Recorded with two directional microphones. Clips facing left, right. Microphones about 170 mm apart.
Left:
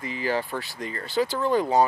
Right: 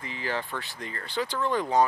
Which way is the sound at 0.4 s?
40° left (ahead or behind).